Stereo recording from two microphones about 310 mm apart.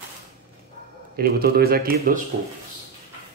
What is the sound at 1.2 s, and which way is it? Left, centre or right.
Speech, right.